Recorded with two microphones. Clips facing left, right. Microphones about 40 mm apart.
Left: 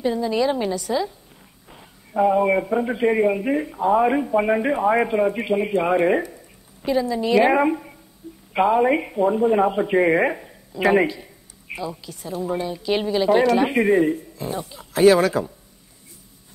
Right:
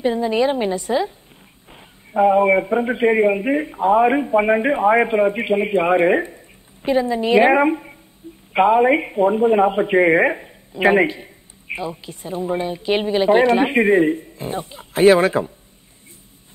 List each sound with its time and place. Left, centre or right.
0.0 s speech: right